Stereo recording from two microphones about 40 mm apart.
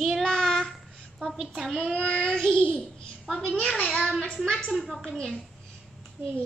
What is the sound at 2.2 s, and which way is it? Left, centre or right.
Speech, centre.